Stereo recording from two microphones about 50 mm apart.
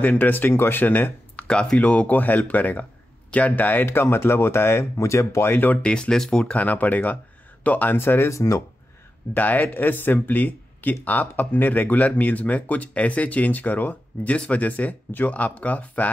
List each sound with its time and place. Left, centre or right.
0.0 s speech: left
1.5 s speech: left
3.8 s speech: left
5.5 s speech: left
5.8 s speech: centre
6.6 s speech: left
8.0 s speech: left
8.3 s speech: left
9.3 s speech: left